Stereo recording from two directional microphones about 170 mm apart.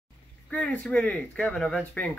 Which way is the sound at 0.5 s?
10° left (ahead or behind).